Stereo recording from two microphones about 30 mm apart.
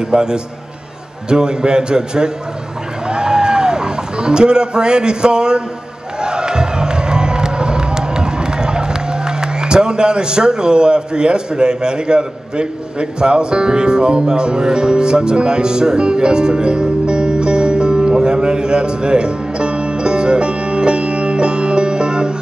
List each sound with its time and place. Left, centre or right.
0.1 s a man's voice: right
3.1 s a sound: right
6.2 s crowd: right